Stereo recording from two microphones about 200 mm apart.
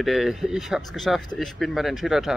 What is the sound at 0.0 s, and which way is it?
Speech, centre (ahead or behind).